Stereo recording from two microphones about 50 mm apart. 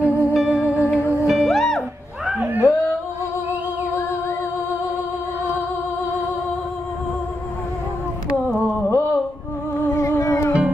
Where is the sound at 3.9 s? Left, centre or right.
Left.